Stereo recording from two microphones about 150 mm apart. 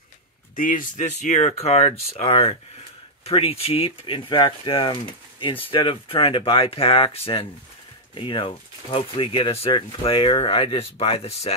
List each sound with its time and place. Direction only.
0.6 s speech: 65° left (ahead or behind); by 11.5 s 45° left (ahead or behind)